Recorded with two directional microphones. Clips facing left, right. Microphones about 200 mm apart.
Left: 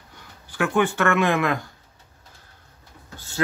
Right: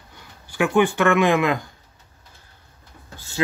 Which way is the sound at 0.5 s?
15° right (ahead or behind).